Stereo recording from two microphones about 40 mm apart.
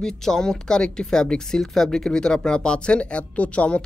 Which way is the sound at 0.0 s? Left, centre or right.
Centre.